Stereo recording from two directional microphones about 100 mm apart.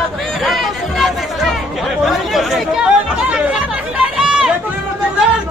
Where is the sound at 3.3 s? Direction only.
10° right (ahead or behind).